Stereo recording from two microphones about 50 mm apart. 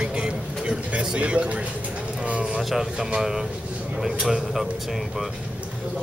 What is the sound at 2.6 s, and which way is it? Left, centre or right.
A man's voice, centre.